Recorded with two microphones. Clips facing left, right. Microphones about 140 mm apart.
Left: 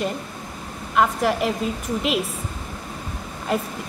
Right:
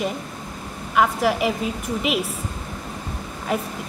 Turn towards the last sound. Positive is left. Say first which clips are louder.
# left 1 dB
turn(degrees=0)  # may be behind; listen again after turning